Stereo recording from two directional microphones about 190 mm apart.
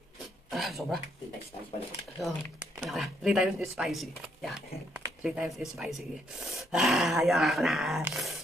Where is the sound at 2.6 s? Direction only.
10° right (ahead or behind).